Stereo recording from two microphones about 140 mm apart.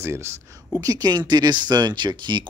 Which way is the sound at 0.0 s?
20° right (ahead or behind).